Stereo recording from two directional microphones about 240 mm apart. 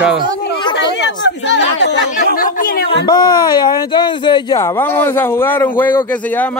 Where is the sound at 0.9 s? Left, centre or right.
Left.